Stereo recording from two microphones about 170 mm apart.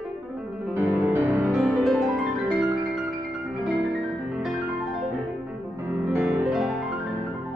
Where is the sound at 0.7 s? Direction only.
15° right (ahead or behind).